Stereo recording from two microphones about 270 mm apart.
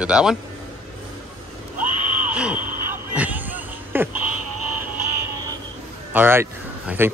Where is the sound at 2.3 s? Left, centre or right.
Centre.